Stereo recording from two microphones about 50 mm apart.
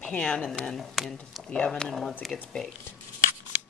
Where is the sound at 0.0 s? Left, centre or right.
Centre.